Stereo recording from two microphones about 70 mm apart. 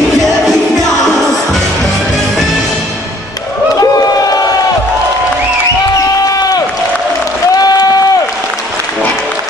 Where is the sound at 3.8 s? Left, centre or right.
Left.